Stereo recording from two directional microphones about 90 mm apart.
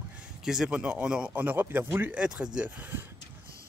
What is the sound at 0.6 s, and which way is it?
Speech, 15° right (ahead or behind).